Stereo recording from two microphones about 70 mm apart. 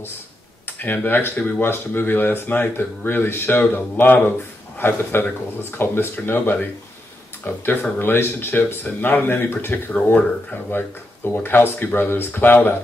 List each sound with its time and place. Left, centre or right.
0.7 s speech: left